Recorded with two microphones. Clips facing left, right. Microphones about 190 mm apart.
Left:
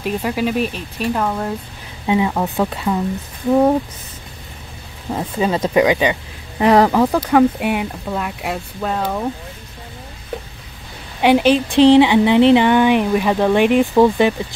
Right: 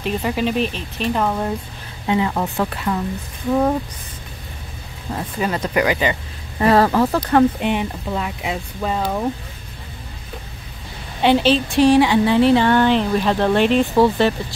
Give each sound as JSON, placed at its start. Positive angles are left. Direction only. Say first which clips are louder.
{"t": 0.0, "sound": "speech", "louder": "left 1 dB", "side_deg": 5}
{"t": 1.2, "sound": "speech", "louder": "even", "side_deg": -5}
{"t": 2.0, "sound": "speech", "louder": "left 2 dB", "side_deg": 15}
{"t": 5.1, "sound": "speech", "louder": "left 4 dB", "side_deg": 25}
{"t": 11.1, "sound": "speech", "louder": "left 2 dB", "side_deg": 15}